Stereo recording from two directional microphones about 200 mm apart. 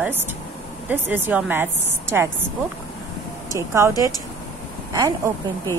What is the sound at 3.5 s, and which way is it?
Speech, 15° right (ahead or behind).